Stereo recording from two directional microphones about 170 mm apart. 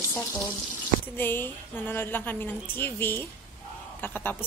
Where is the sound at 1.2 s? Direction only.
10° left (ahead or behind).